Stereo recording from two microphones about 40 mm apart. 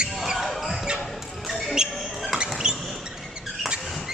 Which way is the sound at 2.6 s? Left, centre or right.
Centre.